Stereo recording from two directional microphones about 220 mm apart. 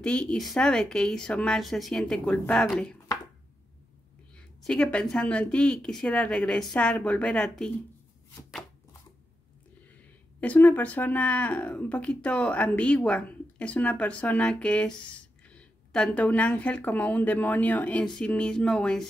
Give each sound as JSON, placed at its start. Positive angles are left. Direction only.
{"t": 0.0, "sound": "speech", "side_deg": 5}
{"t": 4.6, "sound": "speech", "side_deg": 5}
{"t": 10.4, "sound": "speech", "side_deg": 5}